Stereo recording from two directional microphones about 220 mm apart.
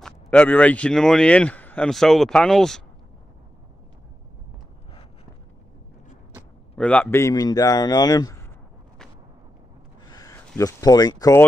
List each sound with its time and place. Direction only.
0.0 s speech: 5° left (ahead or behind)
6.8 s speech: 5° left (ahead or behind)
10.0 s a sound: 15° left (ahead or behind)
10.5 s speech: 15° left (ahead or behind)